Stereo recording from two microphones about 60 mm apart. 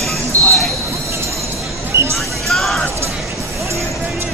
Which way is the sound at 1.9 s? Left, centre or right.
Right.